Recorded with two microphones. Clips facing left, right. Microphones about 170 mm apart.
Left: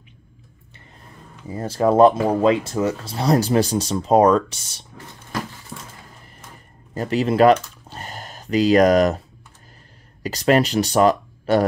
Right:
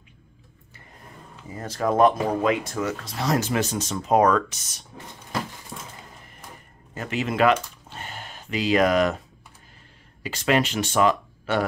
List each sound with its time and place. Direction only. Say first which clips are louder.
1.5 s speech: left 6 dB; 30° left (ahead or behind)
5.7 s a sound: left 2 dB; 10° right (ahead or behind)
6.9 s speech: left 7 dB; 35° left (ahead or behind)
10.2 s speech: left 5 dB; 40° left (ahead or behind)